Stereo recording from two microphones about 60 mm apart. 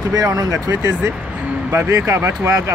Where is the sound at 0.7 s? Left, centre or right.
Right.